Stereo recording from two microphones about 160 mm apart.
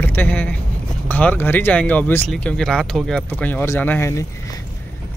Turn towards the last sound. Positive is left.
turn(degrees=15)  # may be behind; listen again after turning